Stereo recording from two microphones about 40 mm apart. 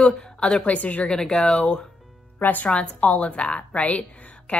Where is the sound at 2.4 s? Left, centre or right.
Left.